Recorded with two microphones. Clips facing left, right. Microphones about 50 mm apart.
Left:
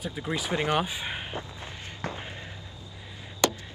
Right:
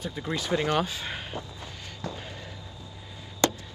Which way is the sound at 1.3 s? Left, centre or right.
Left.